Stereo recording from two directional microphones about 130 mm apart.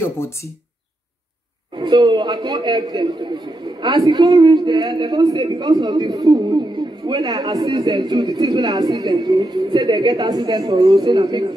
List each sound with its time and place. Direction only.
1.8 s speech: 35° right (ahead or behind)